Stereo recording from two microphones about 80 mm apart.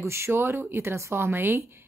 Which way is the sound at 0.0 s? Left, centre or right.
Right.